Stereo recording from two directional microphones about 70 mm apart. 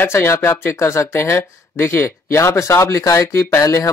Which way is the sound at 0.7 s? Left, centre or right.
Left.